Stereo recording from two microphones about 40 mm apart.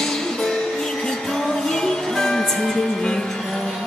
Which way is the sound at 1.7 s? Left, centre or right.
Centre.